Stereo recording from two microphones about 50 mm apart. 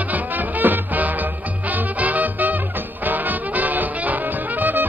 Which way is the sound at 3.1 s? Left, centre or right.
Right.